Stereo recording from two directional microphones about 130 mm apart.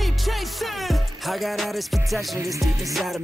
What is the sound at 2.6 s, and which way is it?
Music, centre (ahead or behind).